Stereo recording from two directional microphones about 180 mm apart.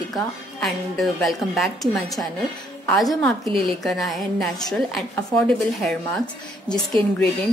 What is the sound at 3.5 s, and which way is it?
Speech, 30° right (ahead or behind).